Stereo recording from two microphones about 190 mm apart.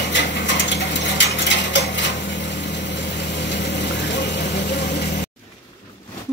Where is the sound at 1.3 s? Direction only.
70° left (ahead or behind).